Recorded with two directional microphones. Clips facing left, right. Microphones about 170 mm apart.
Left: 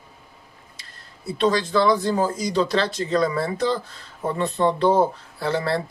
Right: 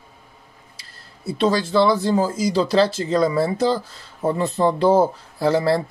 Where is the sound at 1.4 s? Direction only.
30° right (ahead or behind).